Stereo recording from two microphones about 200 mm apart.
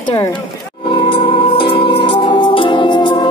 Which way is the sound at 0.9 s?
25° left (ahead or behind).